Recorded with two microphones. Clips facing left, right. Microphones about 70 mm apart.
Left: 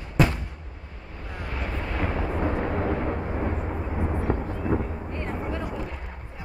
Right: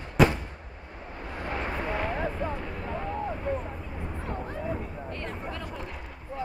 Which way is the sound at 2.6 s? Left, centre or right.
Left.